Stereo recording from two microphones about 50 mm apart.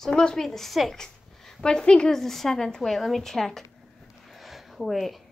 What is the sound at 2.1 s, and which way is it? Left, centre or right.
A woman's voice, centre.